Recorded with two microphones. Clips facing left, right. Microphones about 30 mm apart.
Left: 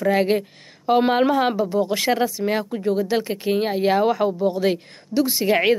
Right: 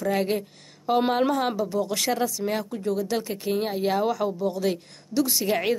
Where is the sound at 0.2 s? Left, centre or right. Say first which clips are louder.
Left 6 dB; left.